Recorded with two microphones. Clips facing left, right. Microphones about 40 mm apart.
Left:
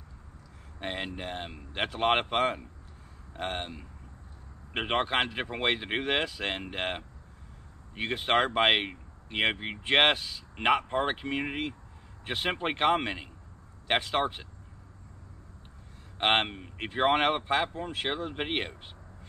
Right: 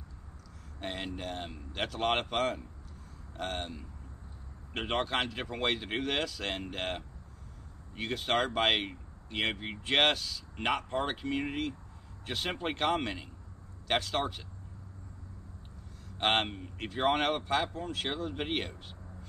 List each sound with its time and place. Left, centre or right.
0.7 s speech: left
16.2 s speech: left